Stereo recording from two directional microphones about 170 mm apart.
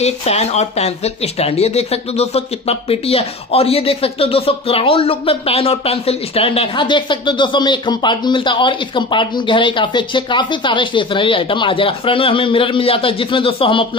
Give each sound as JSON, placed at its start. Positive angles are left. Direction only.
{"t": 0.0, "sound": "speech", "side_deg": 40}